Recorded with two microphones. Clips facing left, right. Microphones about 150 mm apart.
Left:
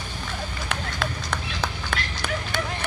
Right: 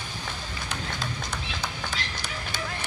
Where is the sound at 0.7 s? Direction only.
60° left (ahead or behind).